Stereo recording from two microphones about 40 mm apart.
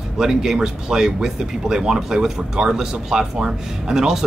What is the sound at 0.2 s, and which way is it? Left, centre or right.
Speech, centre.